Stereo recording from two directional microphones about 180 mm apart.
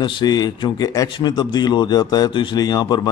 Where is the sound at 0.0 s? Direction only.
25° left (ahead or behind).